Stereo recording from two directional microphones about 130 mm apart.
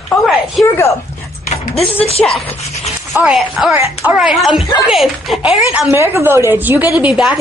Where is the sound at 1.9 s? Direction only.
50° left (ahead or behind).